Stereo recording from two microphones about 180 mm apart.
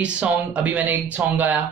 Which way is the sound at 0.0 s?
5° right (ahead or behind).